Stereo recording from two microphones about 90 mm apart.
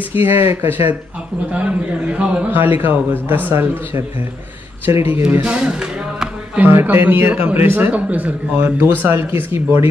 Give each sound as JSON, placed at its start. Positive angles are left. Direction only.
{"t": 0.1, "sound": "a man's voice", "side_deg": -25}
{"t": 5.1, "sound": "a sound", "side_deg": -20}
{"t": 6.6, "sound": "a man's voice", "side_deg": -20}